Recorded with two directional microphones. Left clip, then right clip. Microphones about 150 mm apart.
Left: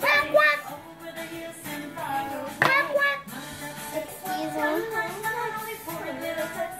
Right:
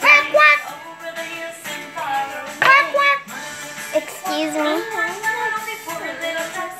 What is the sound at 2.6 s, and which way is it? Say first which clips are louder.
Music: right 10 dB; 10° left (ahead or behind).